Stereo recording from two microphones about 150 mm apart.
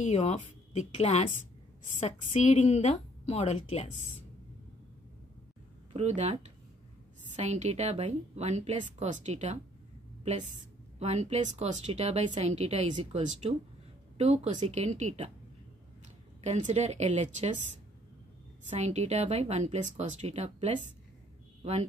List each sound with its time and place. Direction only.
0.0 s a woman's voice: 50° left (ahead or behind)
5.9 s speech: 50° right (ahead or behind)
11.0 s speech: 45° right (ahead or behind)
16.4 s speech: 50° right (ahead or behind)
18.7 s speech: 50° right (ahead or behind)